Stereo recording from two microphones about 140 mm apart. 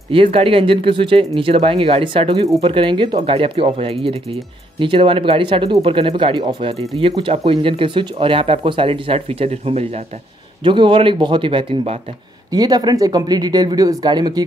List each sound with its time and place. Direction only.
0.1 s speech: 40° right (ahead or behind)
10.6 s speech: 35° right (ahead or behind)
12.4 s speech: 30° right (ahead or behind)